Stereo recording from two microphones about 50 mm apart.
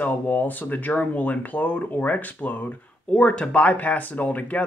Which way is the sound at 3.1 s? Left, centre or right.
Left.